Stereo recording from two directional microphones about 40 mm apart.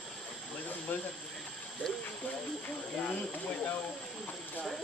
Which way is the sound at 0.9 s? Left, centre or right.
Left.